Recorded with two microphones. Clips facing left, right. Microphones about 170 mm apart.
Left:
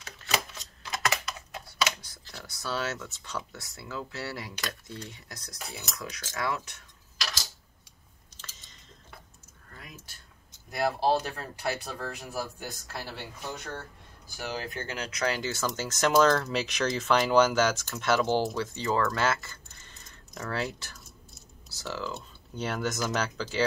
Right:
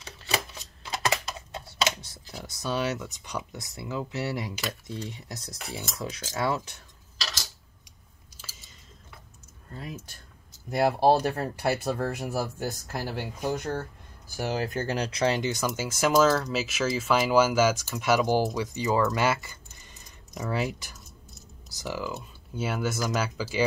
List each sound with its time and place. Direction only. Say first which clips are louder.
0.8 s typing: right 2 dB; 30° right (ahead or behind)
2.3 s speech: right 4 dB; 20° right (ahead or behind)
5.1 s speech: right 6 dB; 25° right (ahead or behind)
8.4 s chewing: right 1 dB; 5° right (ahead or behind)
9.7 s speech: right 10 dB; 30° right (ahead or behind)
11.0 s speech: right 5 dB; 50° right (ahead or behind); by 23.6 s 10° right (ahead or behind)